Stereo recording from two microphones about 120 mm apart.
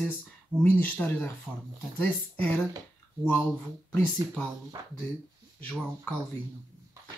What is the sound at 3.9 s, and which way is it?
Speech, 15° left (ahead or behind).